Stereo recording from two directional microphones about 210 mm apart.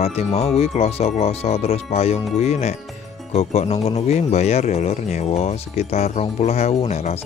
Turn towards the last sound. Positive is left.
turn(degrees=30)  # may be behind; listen again after turning